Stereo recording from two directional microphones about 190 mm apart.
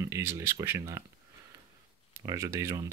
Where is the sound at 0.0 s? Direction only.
15° right (ahead or behind).